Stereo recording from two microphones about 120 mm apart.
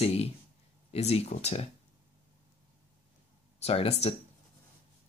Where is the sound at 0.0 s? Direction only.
60° left (ahead or behind).